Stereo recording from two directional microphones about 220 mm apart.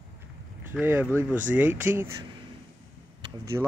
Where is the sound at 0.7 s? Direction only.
10° right (ahead or behind).